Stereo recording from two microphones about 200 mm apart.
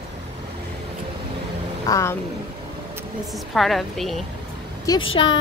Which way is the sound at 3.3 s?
Centre (ahead or behind).